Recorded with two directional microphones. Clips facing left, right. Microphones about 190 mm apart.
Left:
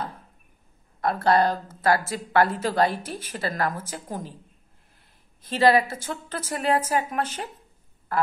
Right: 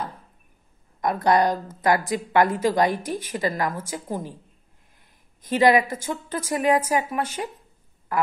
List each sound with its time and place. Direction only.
1.0 s a woman's voice: 15° right (ahead or behind)
5.5 s a woman's voice: 10° right (ahead or behind)